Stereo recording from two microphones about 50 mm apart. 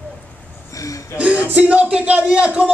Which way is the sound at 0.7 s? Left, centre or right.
Left.